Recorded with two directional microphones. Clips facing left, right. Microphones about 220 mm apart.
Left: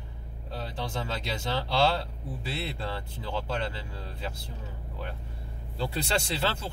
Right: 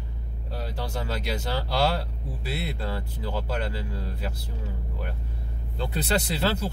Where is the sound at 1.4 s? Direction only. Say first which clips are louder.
Left 1 dB; 5° right (ahead or behind).